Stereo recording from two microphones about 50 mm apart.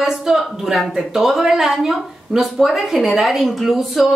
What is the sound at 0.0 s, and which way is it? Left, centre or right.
A woman's voice, centre.